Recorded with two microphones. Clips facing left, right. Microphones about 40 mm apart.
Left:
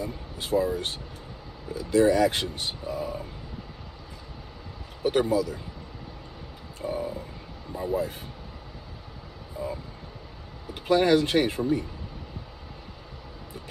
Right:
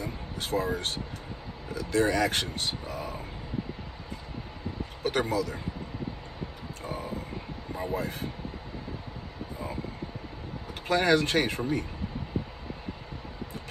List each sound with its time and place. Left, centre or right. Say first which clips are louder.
0.0 s speech: left 1 dB; right
5.0 s speech: left 4 dB; right
6.8 s a sound: left 5 dB; right
7.7 s speech: left 4 dB; right
10.7 s speech: left 3 dB; right
12.4 s a sound: right 9 dB; right